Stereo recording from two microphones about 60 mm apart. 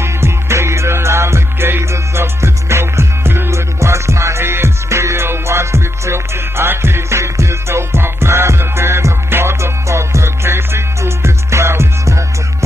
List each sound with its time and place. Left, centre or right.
0.0 s music: right